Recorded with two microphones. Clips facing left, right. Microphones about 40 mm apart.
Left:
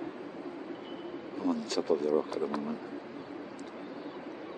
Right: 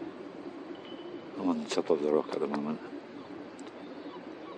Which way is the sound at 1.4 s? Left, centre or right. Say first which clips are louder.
Right 1 dB; right.